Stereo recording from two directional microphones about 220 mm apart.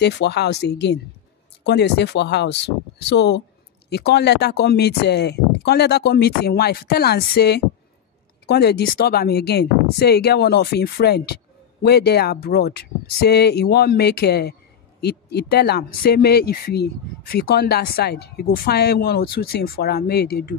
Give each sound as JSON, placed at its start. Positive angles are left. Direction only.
{"t": 0.0, "sound": "speech", "side_deg": 50}